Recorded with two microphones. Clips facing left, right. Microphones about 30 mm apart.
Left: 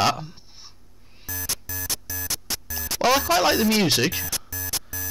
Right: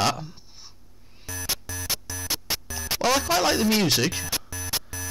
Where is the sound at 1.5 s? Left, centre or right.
Right.